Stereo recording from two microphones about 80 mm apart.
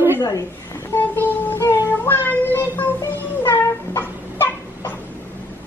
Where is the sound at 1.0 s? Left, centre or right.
Left.